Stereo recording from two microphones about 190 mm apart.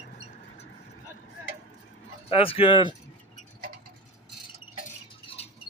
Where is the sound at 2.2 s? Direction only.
30° left (ahead or behind).